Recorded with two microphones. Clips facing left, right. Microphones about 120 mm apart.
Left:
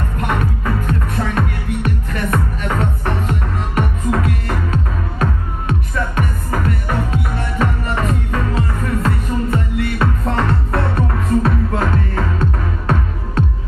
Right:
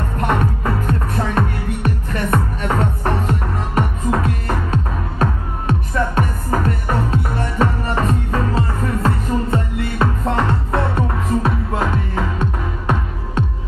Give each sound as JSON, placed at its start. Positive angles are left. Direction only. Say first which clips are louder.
{"t": 0.3, "sound": "music", "louder": "right 1 dB", "side_deg": -30}